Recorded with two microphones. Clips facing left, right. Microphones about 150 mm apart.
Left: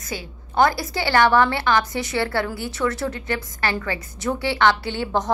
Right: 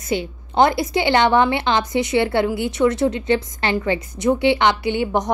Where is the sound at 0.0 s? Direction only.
25° right (ahead or behind).